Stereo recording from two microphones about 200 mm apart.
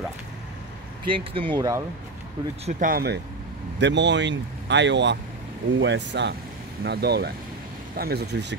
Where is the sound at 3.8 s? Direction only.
60° right (ahead or behind).